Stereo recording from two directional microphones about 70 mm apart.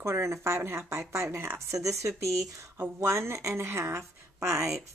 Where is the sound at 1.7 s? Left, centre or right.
Right.